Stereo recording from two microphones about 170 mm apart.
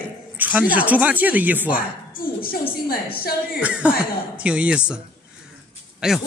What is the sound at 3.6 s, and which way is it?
A man's voice, 5° right (ahead or behind).